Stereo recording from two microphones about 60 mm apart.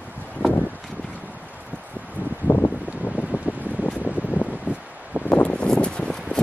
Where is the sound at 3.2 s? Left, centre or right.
Left.